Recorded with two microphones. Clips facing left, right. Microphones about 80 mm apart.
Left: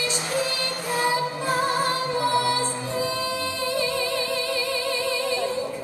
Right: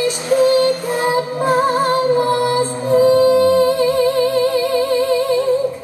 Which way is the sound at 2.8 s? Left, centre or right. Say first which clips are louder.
Right 16 dB; right.